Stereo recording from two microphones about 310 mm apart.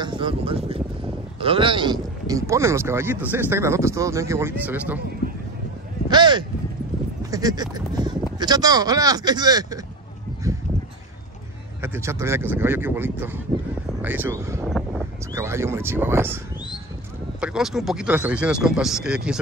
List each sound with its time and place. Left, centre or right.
0.0 s speech: centre
6.0 s a sound: centre
7.2 s speech: centre
10.4 s a sound: centre
11.8 s speech: centre
17.4 s speech: centre